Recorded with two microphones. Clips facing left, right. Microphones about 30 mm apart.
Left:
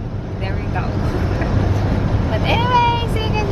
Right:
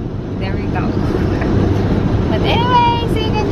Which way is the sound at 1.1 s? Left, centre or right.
Centre.